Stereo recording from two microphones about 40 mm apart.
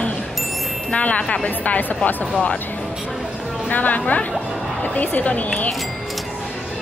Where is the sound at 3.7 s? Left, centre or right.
Left.